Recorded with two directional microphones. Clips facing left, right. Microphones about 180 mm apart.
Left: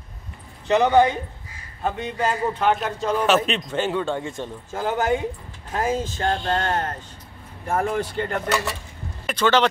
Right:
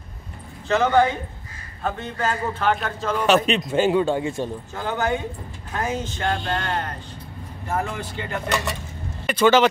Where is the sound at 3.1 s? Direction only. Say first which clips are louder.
Right 2 dB; centre (ahead or behind).